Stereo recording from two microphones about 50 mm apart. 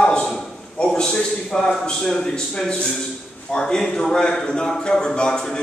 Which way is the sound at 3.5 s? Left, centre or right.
Centre.